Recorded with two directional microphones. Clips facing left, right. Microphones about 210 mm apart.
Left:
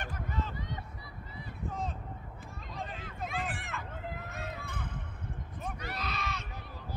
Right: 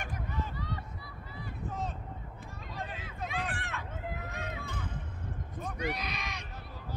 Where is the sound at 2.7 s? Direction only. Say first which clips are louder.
Even; centre (ahead or behind).